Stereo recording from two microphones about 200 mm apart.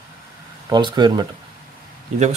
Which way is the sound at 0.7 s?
20° right (ahead or behind).